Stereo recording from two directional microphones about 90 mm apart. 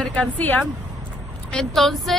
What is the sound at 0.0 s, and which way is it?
A woman's voice, 10° left (ahead or behind).